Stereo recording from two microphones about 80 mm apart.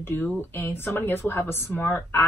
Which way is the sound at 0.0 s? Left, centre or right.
Left.